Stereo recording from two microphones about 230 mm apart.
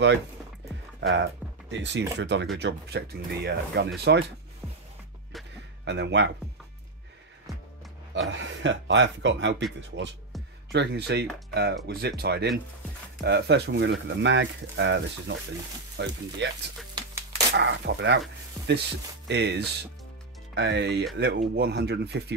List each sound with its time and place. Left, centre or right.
1.0 s speech: right
5.3 s a sound: centre
5.9 s speech: right
8.1 s speech: right
10.3 s music: centre
10.7 s speech: right